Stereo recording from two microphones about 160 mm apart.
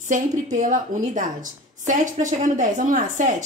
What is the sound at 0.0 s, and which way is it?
Speech, 50° right (ahead or behind).